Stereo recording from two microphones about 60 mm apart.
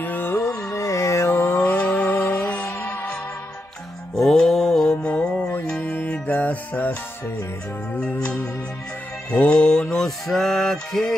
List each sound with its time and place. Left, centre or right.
0.0 s music: left
0.7 s a sound: left
2.4 s music: left
4.2 s music: centre; by 6.9 s left
9.3 s mantra: centre